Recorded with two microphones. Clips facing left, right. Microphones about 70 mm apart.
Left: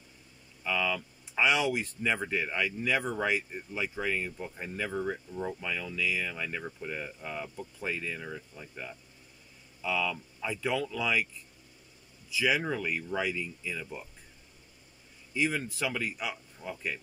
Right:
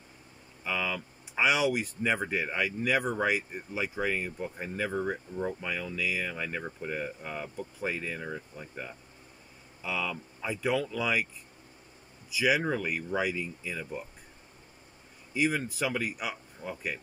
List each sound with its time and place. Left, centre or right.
0.7 s speech: centre
12.3 s speech: centre
15.3 s speech: centre